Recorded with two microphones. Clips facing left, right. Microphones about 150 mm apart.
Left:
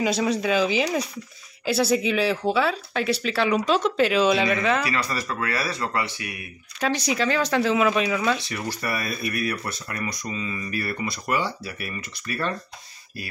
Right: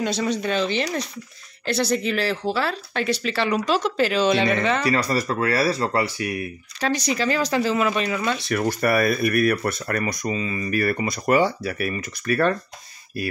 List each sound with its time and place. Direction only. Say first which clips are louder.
0.0 s speech: left 1 dB; 5° left (ahead or behind)
4.8 s speech: right 6 dB; 40° right (ahead or behind)
6.8 s speech: right 1 dB; 5° left (ahead or behind)
8.5 s speech: right 8 dB; 55° right (ahead or behind)